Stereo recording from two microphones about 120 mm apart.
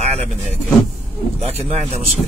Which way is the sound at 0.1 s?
60° right (ahead or behind).